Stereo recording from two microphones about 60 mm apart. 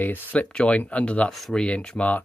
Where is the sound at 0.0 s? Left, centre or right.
Left.